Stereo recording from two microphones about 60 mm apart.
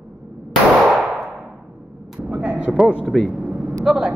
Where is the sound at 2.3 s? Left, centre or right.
Centre.